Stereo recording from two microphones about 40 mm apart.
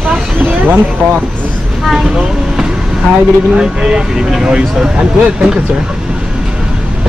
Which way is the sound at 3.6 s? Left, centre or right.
Right.